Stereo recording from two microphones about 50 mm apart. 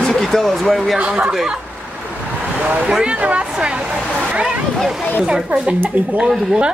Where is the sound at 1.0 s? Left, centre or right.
Centre.